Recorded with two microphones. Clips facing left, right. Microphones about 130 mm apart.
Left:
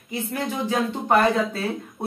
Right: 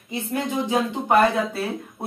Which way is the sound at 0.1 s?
25° right (ahead or behind).